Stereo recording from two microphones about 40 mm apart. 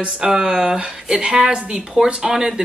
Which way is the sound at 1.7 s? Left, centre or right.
Centre.